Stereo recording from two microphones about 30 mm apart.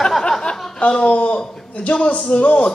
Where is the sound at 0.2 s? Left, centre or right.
Left.